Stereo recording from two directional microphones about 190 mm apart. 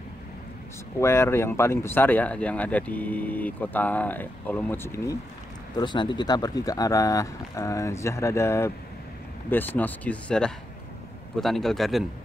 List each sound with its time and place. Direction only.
1.0 s speech: 10° left (ahead or behind)
5.8 s a man's voice: 25° left (ahead or behind); by 12.0 s centre (ahead or behind)